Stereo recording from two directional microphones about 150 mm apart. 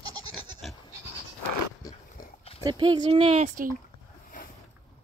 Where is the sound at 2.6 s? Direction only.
30° right (ahead or behind).